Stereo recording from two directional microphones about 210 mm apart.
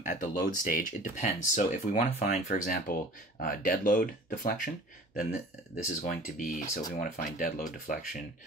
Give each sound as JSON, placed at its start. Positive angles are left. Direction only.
{"t": 0.0, "sound": "speech", "side_deg": 40}